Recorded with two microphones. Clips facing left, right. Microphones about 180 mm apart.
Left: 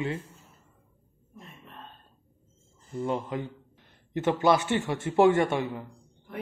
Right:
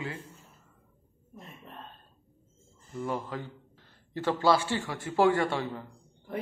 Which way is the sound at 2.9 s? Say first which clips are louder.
Left 4 dB; 25° left (ahead or behind).